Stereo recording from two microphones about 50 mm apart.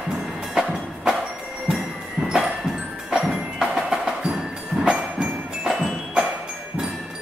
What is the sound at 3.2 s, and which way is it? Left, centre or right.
Wood block, centre.